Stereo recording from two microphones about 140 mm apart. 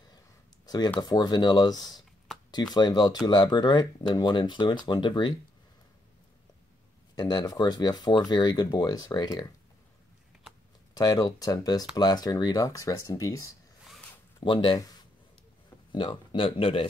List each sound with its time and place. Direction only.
0.7 s speech: 30° left (ahead or behind)
7.2 s speech: 30° left (ahead or behind)
11.0 s speech: 30° left (ahead or behind)
14.4 s speech: 40° left (ahead or behind)
15.9 s speech: 35° left (ahead or behind)